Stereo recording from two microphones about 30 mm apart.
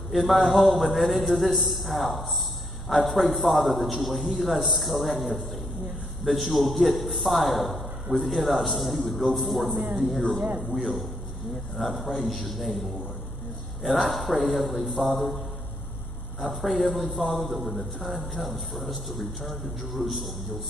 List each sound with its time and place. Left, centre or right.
0.1 s a man's voice: centre
14.0 s a man's voice: centre
16.3 s a man's voice: centre